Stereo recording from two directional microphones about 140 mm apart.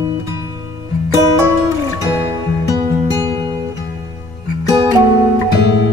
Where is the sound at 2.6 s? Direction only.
25° right (ahead or behind).